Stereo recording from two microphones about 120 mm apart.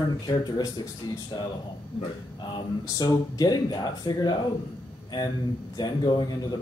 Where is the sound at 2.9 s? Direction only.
30° left (ahead or behind).